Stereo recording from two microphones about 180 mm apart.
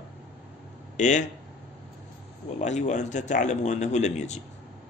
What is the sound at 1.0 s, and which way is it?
Speech, 40° left (ahead or behind).